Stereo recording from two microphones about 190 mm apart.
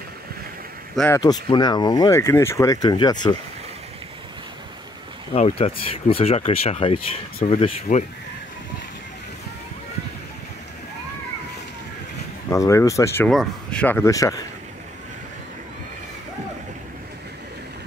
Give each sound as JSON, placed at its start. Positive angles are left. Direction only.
{"t": 0.9, "sound": "speech", "side_deg": 10}
{"t": 1.2, "sound": "speech", "side_deg": 20}
{"t": 5.3, "sound": "speech", "side_deg": 30}
{"t": 12.4, "sound": "speech", "side_deg": 15}
{"t": 13.3, "sound": "speech", "side_deg": 5}